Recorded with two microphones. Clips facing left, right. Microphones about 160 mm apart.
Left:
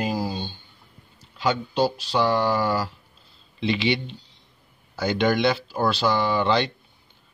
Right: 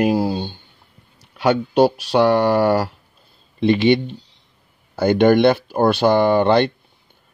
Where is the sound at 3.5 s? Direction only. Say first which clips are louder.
Right 9 dB; 50° right (ahead or behind).